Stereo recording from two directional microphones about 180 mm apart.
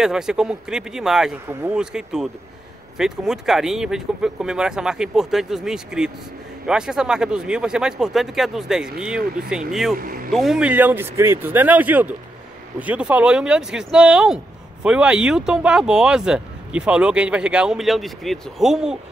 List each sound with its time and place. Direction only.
0.0 s speech: 5° right (ahead or behind)
9.9 s speech: 50° right (ahead or behind)
10.3 s speech: centre (ahead or behind)